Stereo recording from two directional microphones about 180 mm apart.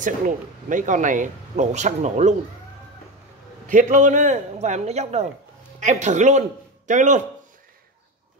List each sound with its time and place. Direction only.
0.7 s speech: 45° right (ahead or behind)
3.6 s a man's voice: 45° right (ahead or behind)